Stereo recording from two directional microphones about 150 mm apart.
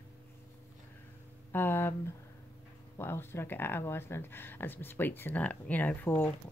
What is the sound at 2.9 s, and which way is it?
Speech, 15° left (ahead or behind).